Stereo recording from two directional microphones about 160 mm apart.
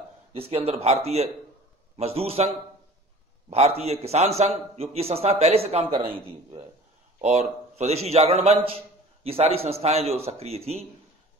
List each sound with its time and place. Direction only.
0.4 s a man's voice: 40° right (ahead or behind)
7.2 s a man's voice: 45° right (ahead or behind)